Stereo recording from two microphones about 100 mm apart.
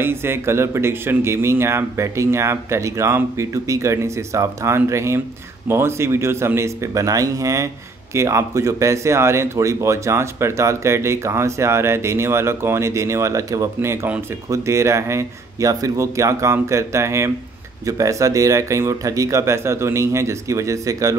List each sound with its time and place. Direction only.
0.0 s speech: 25° right (ahead or behind)